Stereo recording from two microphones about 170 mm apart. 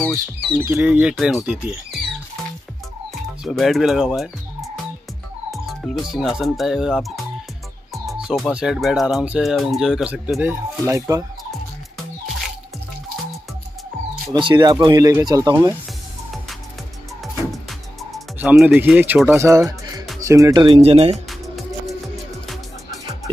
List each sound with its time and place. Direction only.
0.6 s speech: 10° right (ahead or behind)
3.4 s speech: centre (ahead or behind); by 11.2 s 20° right (ahead or behind)
14.3 s speech: 25° right (ahead or behind)
17.5 s music: centre (ahead or behind); by 19.7 s 15° right (ahead or behind)
20.2 s speech: 20° right (ahead or behind)
20.6 s speech: 35° right (ahead or behind)
21.3 s music: centre (ahead or behind)